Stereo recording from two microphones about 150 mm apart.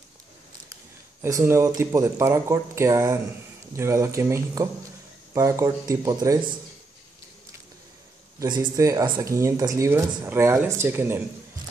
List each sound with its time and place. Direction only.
1.2 s speech: 15° right (ahead or behind)
8.4 s speech: 25° right (ahead or behind)